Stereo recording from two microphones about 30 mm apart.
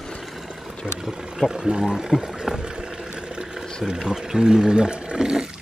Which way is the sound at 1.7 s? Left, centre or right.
Right.